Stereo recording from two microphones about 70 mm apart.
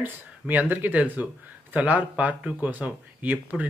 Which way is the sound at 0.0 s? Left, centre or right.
Right.